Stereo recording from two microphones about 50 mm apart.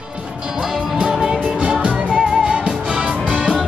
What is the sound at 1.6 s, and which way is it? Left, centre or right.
Music, right.